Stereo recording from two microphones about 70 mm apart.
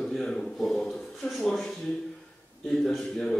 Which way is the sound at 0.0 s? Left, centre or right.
Centre.